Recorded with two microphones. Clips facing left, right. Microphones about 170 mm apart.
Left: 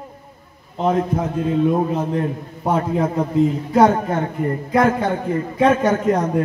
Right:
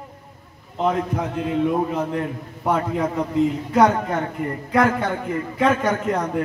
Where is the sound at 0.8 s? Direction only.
40° left (ahead or behind).